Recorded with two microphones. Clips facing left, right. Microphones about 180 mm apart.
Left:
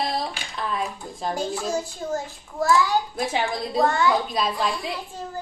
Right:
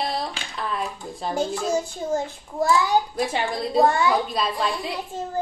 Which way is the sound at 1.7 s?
20° right (ahead or behind).